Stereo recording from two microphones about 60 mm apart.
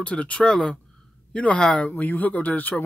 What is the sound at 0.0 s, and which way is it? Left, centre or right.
Speech, left.